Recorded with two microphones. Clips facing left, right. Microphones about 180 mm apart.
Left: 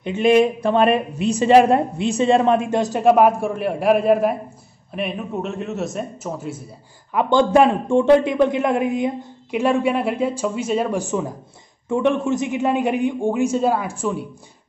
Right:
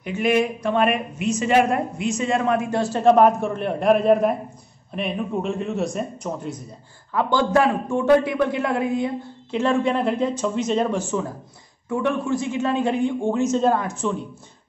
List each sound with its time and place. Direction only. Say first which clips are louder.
0.0 s a woman's voice: left 5 dB; 25° left (ahead or behind); by 6.6 s 5° left (ahead or behind)
7.1 s a man's voice: left 4 dB; 20° left (ahead or behind)